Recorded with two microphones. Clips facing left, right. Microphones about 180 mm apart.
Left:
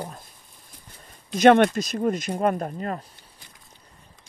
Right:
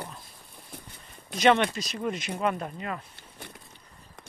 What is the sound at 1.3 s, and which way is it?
Speech, 50° left (ahead or behind).